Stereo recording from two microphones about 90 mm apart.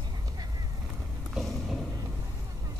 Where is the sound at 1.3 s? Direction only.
Centre (ahead or behind).